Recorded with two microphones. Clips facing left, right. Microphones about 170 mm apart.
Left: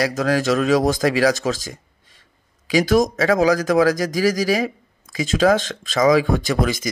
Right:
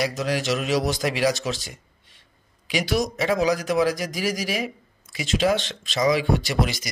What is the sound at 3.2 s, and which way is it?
A man's voice, 90° left.